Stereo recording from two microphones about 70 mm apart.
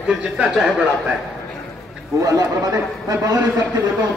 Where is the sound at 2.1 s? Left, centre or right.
Right.